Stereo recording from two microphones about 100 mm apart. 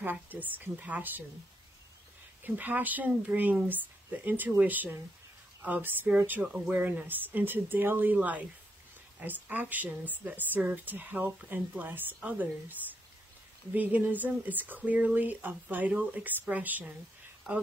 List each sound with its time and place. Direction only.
0.0 s speech: 20° right (ahead or behind)
2.4 s speech: 20° right (ahead or behind)
6.4 s speech: 5° right (ahead or behind)
6.7 s speech: 15° right (ahead or behind)
13.7 s speech: 15° right (ahead or behind)